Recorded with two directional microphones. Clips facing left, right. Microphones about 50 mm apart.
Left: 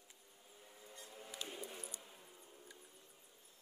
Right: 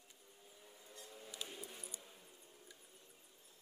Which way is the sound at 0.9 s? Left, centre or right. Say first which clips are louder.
Left 1 dB; centre.